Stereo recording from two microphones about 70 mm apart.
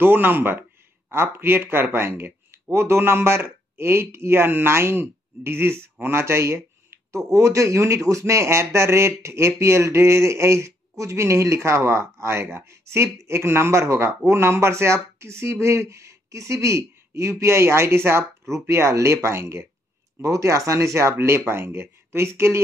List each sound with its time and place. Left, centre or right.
0.0 s speech: right
20.2 s speech: right